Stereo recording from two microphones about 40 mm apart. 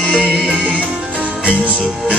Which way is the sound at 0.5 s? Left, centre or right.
Right.